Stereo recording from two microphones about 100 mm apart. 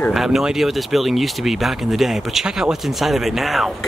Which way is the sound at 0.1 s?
5° right (ahead or behind).